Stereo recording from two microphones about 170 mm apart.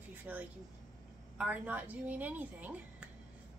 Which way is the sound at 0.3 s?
10° right (ahead or behind).